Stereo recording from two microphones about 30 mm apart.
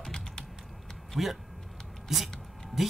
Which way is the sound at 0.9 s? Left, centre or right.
Centre.